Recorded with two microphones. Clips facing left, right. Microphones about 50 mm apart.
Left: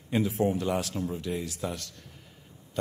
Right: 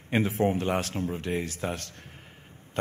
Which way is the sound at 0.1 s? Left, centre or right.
Right.